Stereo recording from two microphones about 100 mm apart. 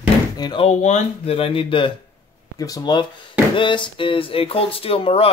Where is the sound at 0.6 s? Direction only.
85° left; by 1.9 s 60° left (ahead or behind).